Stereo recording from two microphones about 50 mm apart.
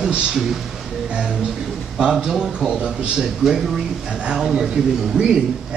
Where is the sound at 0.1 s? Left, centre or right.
Centre.